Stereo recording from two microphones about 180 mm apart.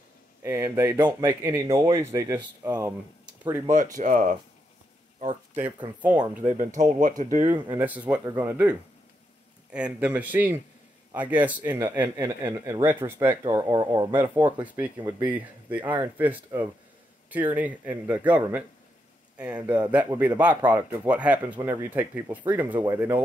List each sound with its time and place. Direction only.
0.4 s speech: 15° right (ahead or behind)
3.7 s speech: 45° right (ahead or behind)
6.5 s speech: 45° right (ahead or behind)
7.8 s speech: 10° right (ahead or behind)
14.1 s speech: 10° right (ahead or behind)